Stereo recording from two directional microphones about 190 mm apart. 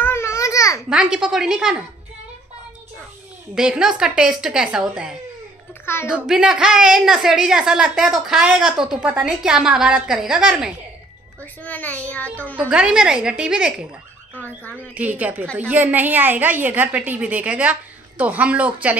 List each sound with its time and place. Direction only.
0.0 s babbling: 15° left (ahead or behind)
0.8 s a woman's voice: 5° right (ahead or behind)
3.5 s a woman's voice: 5° right (ahead or behind)
11.6 s bird: 10° left (ahead or behind)
12.5 s a woman's voice: 5° right (ahead or behind)
14.3 s bird: 10° left (ahead or behind)
15.0 s a woman's voice: 10° right (ahead or behind)